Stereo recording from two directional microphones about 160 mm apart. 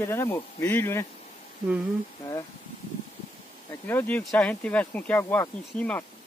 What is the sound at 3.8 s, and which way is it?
Speech, 10° left (ahead or behind).